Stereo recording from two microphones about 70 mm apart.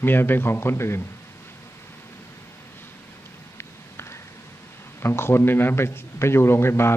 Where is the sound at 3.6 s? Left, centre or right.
Left.